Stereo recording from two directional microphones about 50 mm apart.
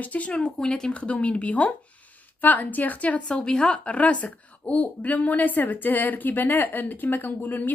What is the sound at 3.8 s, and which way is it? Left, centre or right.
A woman's voice, left.